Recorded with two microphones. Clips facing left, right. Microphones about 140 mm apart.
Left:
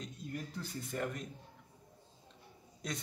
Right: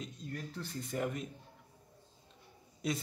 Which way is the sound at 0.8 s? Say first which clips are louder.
Right 3 dB; centre (ahead or behind).